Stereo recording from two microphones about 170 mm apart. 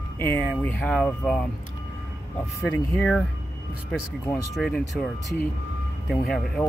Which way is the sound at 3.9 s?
5° left (ahead or behind).